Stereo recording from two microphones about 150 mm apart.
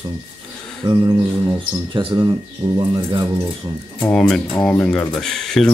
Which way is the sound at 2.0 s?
30° right (ahead or behind).